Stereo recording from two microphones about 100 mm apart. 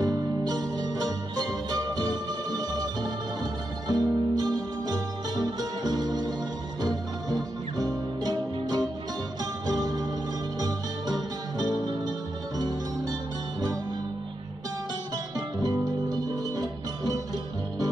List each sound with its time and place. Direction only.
0.0 s music: 40° right (ahead or behind)
15.3 s music: 40° right (ahead or behind)